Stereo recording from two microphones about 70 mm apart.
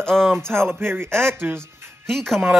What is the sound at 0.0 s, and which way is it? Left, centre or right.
Music, centre.